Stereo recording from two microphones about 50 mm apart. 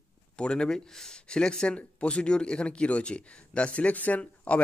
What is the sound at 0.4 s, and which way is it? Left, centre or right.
Speech, centre.